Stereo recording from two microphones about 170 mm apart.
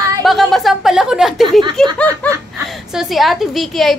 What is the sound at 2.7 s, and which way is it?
Speech, centre (ahead or behind).